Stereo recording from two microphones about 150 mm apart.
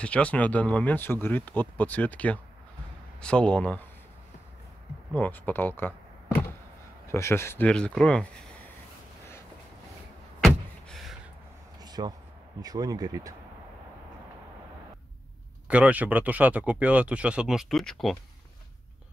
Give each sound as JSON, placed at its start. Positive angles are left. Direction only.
{"t": 0.0, "sound": "speech", "side_deg": 10}
{"t": 5.1, "sound": "speech", "side_deg": 10}
{"t": 7.1, "sound": "speech", "side_deg": 20}
{"t": 10.4, "sound": "a sound", "side_deg": 0}
{"t": 11.8, "sound": "a sound", "side_deg": -25}
{"t": 12.6, "sound": "speech", "side_deg": -25}
{"t": 15.7, "sound": "speech", "side_deg": -10}